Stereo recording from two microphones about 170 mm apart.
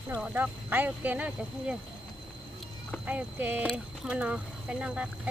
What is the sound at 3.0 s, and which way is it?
Speech, 5° right (ahead or behind).